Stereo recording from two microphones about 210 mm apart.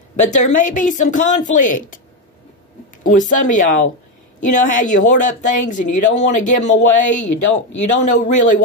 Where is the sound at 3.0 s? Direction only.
40° left (ahead or behind).